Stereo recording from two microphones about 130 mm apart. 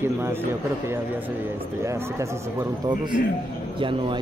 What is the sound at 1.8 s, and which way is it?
Speech, 20° right (ahead or behind).